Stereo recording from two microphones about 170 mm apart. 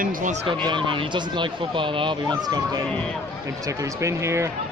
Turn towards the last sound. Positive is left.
turn(degrees=-15)  # may be behind; listen again after turning